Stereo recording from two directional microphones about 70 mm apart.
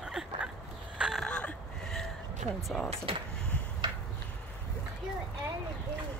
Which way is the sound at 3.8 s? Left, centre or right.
Right.